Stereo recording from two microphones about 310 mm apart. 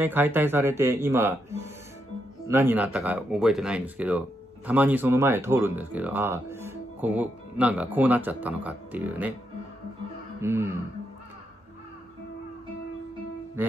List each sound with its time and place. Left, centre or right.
0.0 s speech: centre
10.4 s speech: centre
13.6 s speech: centre